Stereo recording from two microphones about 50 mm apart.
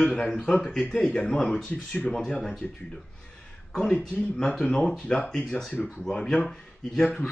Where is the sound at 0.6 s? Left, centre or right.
Centre.